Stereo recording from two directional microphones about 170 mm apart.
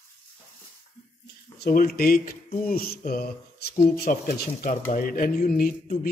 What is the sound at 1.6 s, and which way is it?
Speech, 60° left (ahead or behind).